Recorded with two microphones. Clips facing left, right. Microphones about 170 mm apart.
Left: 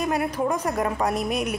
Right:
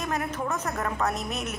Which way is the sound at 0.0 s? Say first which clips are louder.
Left 6 dB; 10° left (ahead or behind).